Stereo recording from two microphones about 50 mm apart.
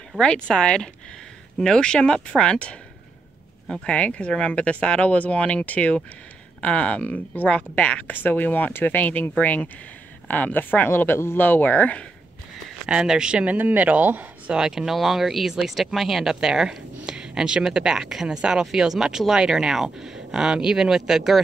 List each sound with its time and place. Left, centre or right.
0.2 s speech: centre
3.8 s speech: left
12.8 s speech: centre
13.5 s speech: right
14.5 s speech: centre